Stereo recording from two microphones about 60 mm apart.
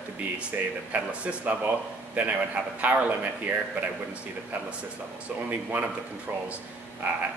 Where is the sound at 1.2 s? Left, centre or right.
Right.